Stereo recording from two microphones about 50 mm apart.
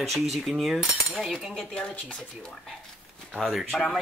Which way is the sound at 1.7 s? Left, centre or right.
Centre.